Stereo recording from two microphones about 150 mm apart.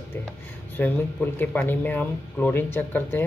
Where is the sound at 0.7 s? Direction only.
10° left (ahead or behind).